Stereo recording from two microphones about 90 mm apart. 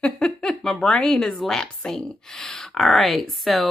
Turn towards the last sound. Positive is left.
turn(degrees=0)  # may be behind; listen again after turning